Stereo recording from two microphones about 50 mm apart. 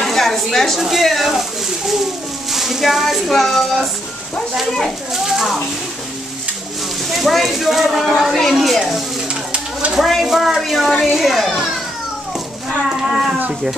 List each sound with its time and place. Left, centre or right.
0.0 s speech: centre
2.5 s speech: centre
5.1 s speech: centre
7.1 s speech: centre
9.3 s a sound: right
9.9 s speech: centre
10.2 s speech: centre
12.9 s speech: centre